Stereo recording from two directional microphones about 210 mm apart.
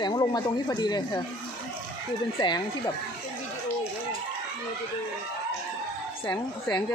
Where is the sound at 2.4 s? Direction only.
20° left (ahead or behind).